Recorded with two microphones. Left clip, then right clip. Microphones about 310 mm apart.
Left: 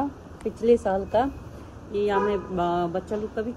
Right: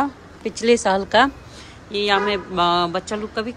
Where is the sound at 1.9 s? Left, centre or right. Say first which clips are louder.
Right 4 dB; right.